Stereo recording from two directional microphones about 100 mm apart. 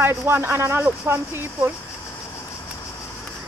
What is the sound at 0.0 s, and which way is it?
Speech, 25° right (ahead or behind).